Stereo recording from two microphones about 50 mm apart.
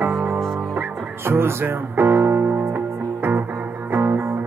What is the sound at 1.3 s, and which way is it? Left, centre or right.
Music, right.